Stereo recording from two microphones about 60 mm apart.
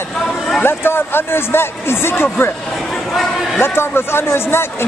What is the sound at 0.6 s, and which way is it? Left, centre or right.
A man's voice, left.